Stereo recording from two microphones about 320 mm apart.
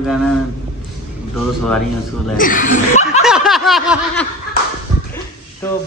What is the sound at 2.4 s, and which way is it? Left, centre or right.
Speech, left.